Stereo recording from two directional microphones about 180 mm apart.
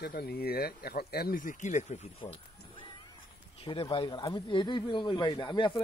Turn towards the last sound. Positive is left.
turn(degrees=25)  # may be behind; listen again after turning